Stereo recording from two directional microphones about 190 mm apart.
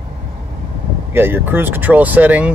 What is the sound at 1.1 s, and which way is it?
Speech, 10° right (ahead or behind).